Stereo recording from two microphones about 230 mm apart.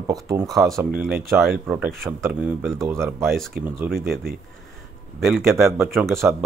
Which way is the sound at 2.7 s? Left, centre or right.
Centre.